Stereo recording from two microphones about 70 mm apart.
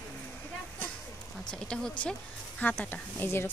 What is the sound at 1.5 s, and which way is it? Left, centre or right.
Speech, centre.